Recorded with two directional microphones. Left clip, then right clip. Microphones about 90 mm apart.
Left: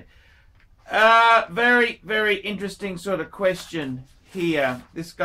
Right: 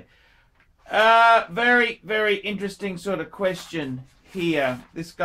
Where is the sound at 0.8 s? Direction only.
Centre (ahead or behind).